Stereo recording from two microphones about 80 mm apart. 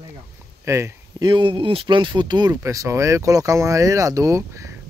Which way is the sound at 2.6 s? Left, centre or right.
Right.